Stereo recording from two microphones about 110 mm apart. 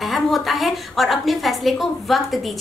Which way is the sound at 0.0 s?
Centre (ahead or behind).